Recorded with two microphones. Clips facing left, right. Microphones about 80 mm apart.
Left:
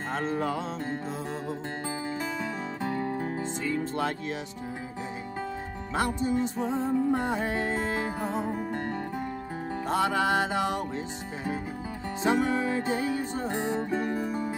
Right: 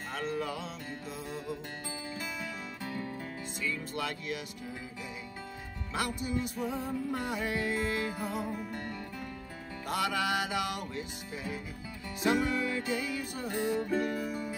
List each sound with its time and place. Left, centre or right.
0.1 s music: left
2.8 s music: left
5.9 s music: left
12.2 s music: left